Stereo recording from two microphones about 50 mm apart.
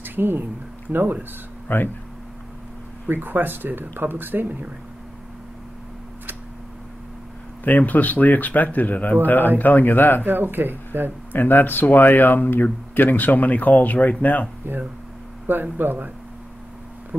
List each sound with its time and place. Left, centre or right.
0.0 s speech: right
1.7 s speech: left
3.1 s speech: right
7.6 s speech: left
10.2 s speech: right
11.3 s speech: left
14.7 s speech: right
17.1 s a sound: right